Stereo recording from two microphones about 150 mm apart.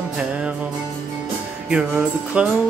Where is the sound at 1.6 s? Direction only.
5° right (ahead or behind).